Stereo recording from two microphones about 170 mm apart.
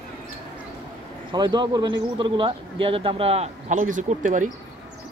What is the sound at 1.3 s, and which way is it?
Speech, 25° right (ahead or behind).